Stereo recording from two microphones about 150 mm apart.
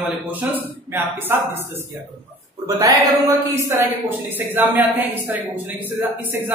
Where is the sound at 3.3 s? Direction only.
15° right (ahead or behind).